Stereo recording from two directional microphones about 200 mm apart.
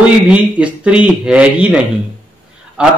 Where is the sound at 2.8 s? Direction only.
5° right (ahead or behind).